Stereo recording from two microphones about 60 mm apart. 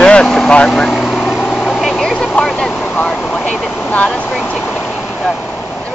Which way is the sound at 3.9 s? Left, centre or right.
Left.